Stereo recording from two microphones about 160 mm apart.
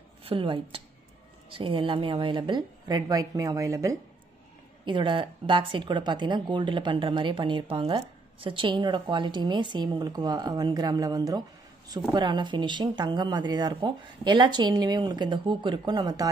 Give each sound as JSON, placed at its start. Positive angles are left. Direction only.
{"t": 0.2, "sound": "a woman's voice", "side_deg": -35}
{"t": 4.8, "sound": "speech", "side_deg": -30}